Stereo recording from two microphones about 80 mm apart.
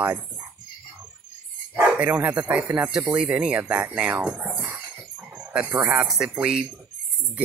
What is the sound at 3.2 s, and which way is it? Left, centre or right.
Speech, centre.